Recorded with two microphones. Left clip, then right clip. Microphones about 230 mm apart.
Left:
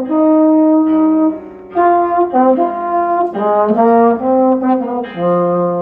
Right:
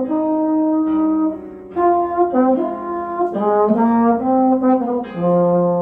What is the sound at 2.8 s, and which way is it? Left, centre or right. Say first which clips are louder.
Brass instrument: left 7 dB; right.